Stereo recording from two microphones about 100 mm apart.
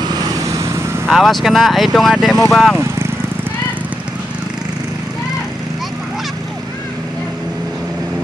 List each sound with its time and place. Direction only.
0.0 s vehicle: 40° right (ahead or behind)
1.0 s speech: centre (ahead or behind)